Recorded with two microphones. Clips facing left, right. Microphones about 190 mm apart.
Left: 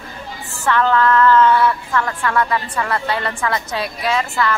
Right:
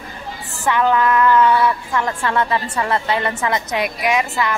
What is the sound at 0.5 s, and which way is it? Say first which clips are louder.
A woman's voice: even; 15° right (ahead or behind).